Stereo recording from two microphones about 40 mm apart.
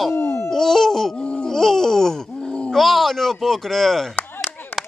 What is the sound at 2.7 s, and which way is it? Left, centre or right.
Speech, centre.